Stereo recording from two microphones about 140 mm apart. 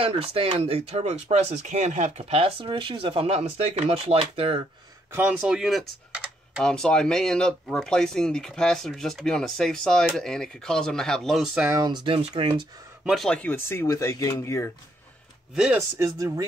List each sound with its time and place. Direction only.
0.0 s speech: 45° right (ahead or behind)
5.1 s speech: 10° right (ahead or behind)
11.7 s speech: 30° right (ahead or behind)
13.0 s speech: centre (ahead or behind); by 14.7 s 20° left (ahead or behind)
15.5 s speech: 5° right (ahead or behind)
16.0 s speech: 25° right (ahead or behind)